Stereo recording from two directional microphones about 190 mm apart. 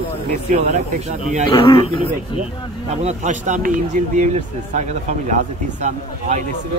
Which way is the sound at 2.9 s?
35° right (ahead or behind).